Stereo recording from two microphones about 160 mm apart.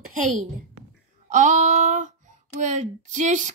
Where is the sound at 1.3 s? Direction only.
50° right (ahead or behind).